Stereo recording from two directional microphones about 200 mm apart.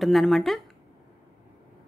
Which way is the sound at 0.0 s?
Centre (ahead or behind).